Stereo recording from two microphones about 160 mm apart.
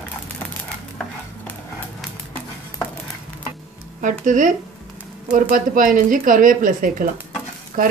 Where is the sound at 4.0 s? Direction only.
55° right (ahead or behind).